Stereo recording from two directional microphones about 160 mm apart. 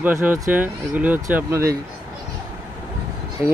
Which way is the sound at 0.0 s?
10° right (ahead or behind).